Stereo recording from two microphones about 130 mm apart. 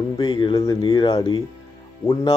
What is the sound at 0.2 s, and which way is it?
Speech, 35° left (ahead or behind).